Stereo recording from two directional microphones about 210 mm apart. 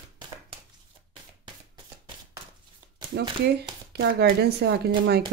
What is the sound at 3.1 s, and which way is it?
Speech, 50° right (ahead or behind).